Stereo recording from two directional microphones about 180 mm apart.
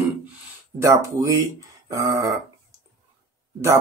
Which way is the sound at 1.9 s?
20° right (ahead or behind).